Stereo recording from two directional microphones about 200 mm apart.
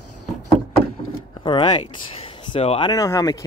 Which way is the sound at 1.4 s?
20° left (ahead or behind).